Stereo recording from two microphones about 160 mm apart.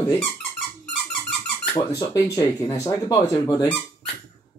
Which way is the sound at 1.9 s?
20° left (ahead or behind).